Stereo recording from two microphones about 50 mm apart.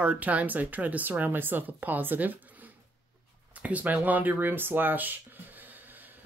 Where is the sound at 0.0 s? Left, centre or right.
Right.